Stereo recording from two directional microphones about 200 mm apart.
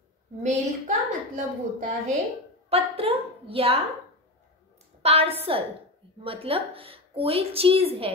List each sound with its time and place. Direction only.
0.4 s a woman's voice: 35° right (ahead or behind)
5.0 s a woman's voice: 30° right (ahead or behind)